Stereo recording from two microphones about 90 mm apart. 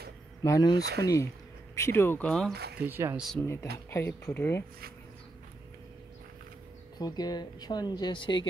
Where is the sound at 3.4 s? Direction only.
30° left (ahead or behind).